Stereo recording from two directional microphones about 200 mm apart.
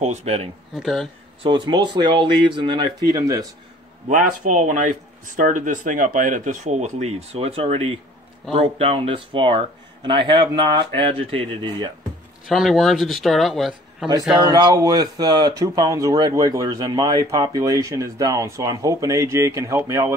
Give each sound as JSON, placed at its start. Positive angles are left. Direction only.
{"t": 0.0, "sound": "speech", "side_deg": -35}
{"t": 0.7, "sound": "speech", "side_deg": 0}
{"t": 1.4, "sound": "speech", "side_deg": -25}
{"t": 4.1, "sound": "speech", "side_deg": -40}
{"t": 12.4, "sound": "speech", "side_deg": 0}
{"t": 14.4, "sound": "speech", "side_deg": -20}